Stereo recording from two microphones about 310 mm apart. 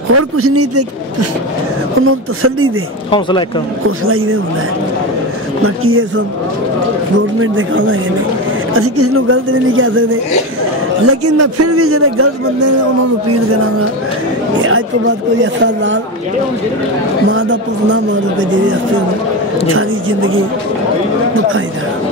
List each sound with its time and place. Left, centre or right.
0.1 s a man's voice: right
2.0 s a man's voice: right
3.1 s speech: centre
4.0 s a woman's voice: right
5.9 s a woman's voice: right
7.3 s a woman's voice: right
17.3 s a woman's voice: right
19.7 s a woman's voice: right